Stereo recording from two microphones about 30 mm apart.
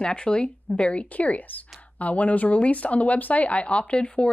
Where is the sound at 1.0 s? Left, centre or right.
Left.